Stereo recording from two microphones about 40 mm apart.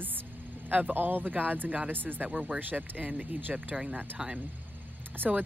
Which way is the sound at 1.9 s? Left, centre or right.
Right.